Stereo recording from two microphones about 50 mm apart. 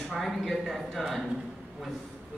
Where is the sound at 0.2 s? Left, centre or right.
Centre.